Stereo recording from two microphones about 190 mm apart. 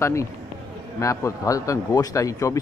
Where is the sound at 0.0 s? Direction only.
15° left (ahead or behind).